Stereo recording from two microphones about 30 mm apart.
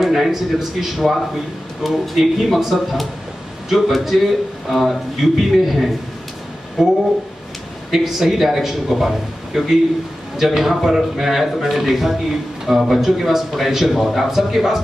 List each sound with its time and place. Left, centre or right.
0.1 s a man's voice: centre
6.8 s a man's voice: centre